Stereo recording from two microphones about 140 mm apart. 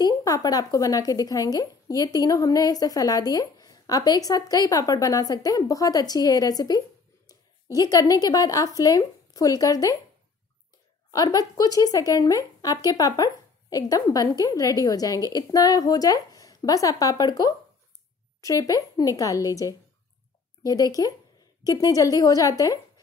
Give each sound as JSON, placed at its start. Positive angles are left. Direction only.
{"t": 0.0, "sound": "speech", "side_deg": 25}
{"t": 11.1, "sound": "speech", "side_deg": 25}